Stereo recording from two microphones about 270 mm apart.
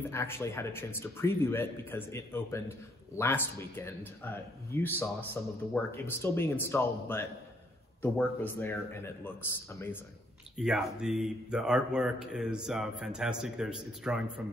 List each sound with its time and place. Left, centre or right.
0.1 s speech: centre
10.6 s speech: centre